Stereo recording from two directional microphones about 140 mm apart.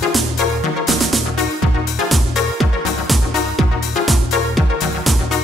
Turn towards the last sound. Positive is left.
turn(degrees=0)  # may be behind; listen again after turning